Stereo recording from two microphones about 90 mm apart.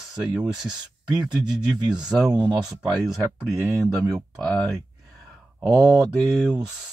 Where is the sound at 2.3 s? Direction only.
50° right (ahead or behind).